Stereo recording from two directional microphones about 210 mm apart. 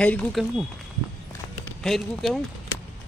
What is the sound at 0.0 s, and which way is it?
Speech, 5° left (ahead or behind).